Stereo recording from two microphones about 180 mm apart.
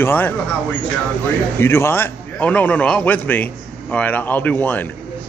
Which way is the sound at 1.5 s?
15° left (ahead or behind).